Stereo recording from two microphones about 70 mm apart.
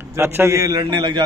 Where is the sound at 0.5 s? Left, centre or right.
Right.